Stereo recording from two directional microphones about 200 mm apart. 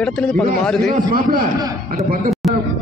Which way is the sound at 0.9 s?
45° right (ahead or behind).